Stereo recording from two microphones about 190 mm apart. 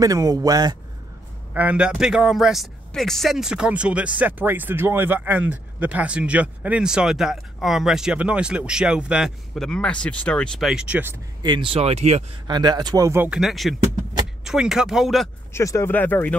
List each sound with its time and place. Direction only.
0.0 s speech: 20° right (ahead or behind)
1.5 s speech: 10° right (ahead or behind)
11.4 s speech: 25° right (ahead or behind)
12.4 s speech: 20° right (ahead or behind); by 15.2 s centre (ahead or behind)
15.5 s speech: 15° left (ahead or behind)